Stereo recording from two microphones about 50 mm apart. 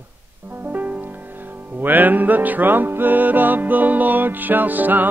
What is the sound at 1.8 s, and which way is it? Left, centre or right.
Music, right.